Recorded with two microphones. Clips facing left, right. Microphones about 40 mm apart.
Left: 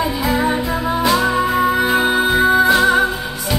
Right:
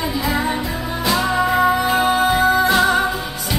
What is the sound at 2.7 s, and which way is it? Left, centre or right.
Music, centre.